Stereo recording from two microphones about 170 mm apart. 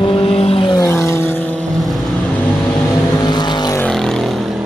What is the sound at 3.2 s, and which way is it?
Vehicle, 25° left (ahead or behind).